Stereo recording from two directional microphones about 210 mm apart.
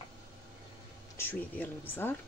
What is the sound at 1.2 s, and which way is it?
Speech, 10° left (ahead or behind).